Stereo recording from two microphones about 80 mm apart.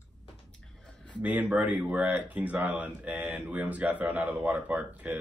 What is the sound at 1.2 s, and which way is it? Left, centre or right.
Speech, right.